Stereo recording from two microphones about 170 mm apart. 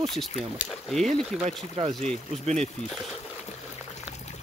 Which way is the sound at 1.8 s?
35° right (ahead or behind).